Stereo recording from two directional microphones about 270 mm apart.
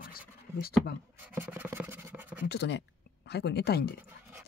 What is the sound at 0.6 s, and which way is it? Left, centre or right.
Speech, left.